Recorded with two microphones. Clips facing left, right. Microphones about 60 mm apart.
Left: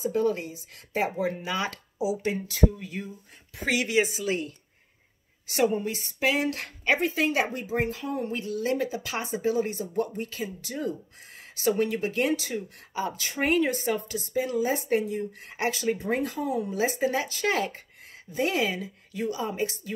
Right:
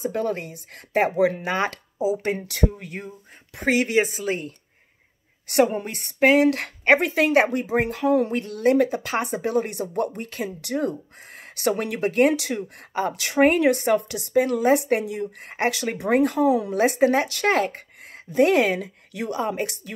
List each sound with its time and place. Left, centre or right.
0.0 s speech: right
1.5 s speech: right
2.4 s speech: right
2.7 s a woman's voice: right
5.5 s speech: right
8.4 s speech: right
12.4 s speech: right
13.4 s speech: right
15.7 s speech: right
17.5 s speech: right